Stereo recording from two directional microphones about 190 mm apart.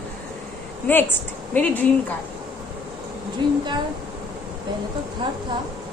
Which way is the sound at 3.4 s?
25° right (ahead or behind).